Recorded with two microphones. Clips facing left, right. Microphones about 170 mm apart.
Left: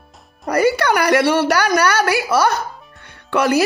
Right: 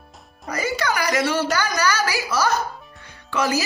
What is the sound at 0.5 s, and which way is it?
Speech, 60° left (ahead or behind).